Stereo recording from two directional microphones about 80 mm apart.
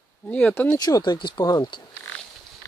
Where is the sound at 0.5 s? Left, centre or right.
Left.